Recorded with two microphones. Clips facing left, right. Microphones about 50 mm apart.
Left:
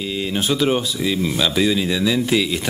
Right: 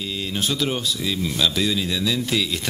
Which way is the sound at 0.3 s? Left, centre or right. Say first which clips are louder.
Left 6 dB; centre.